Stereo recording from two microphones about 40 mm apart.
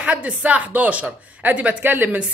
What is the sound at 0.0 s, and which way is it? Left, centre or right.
A woman's voice, right.